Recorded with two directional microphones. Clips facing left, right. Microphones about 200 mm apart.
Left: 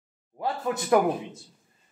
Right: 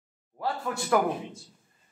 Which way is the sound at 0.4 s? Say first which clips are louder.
Left 3 dB; 20° left (ahead or behind).